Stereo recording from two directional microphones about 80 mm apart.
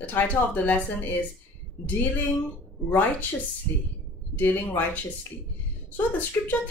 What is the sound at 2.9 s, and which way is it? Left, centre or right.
Speech, left.